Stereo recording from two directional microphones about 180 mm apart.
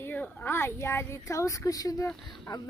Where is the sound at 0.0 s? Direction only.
10° left (ahead or behind).